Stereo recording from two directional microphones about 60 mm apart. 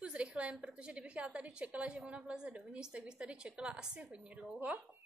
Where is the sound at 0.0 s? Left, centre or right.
Centre.